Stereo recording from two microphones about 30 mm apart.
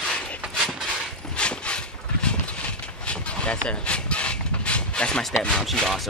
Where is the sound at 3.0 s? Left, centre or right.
Left.